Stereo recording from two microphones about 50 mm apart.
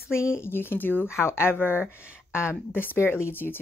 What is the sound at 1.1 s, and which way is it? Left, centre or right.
Speech, left.